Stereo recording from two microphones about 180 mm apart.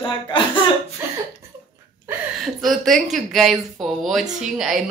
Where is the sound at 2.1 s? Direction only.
15° right (ahead or behind).